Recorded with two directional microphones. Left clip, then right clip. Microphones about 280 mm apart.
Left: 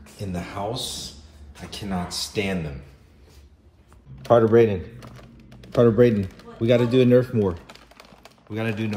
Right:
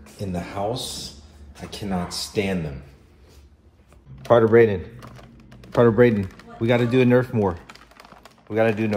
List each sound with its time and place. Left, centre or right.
0.0 s a man's voice: centre
4.4 s a man's voice: centre
5.2 s speech: centre
8.6 s speech: centre